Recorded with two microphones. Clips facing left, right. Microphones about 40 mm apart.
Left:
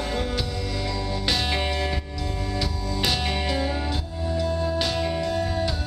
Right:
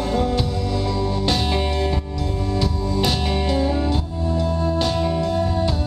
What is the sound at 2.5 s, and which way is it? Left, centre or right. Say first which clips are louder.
Music: right 7 dB; centre.